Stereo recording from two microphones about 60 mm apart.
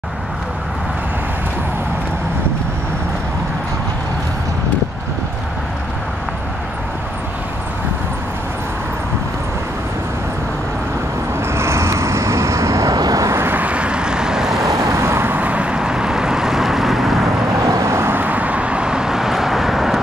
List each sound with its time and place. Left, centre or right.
11.5 s vehicle: right
13.3 s vehicle: right
13.6 s vehicle: right
14.6 s vehicle: right
15.0 s vehicle: right; by 17.2 s centre
17.6 s vehicle: right
17.9 s vehicle: right; by 20.0 s centre